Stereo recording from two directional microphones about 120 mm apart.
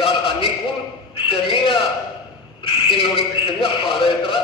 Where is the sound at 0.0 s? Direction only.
50° left (ahead or behind).